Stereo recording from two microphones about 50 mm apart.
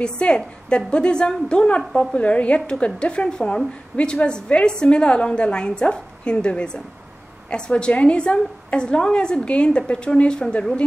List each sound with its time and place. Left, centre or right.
0.0 s a woman's voice: centre